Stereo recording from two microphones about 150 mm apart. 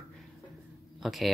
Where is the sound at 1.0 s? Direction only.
Centre (ahead or behind).